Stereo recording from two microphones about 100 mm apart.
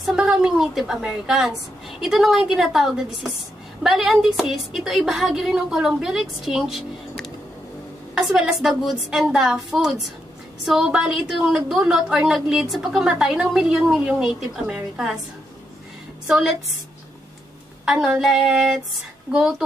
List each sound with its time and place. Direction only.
0.0 s a woman's voice: 5° right (ahead or behind)
16.3 s a woman's voice: 5° right (ahead or behind)
17.8 s a woman's voice: 5° right (ahead or behind)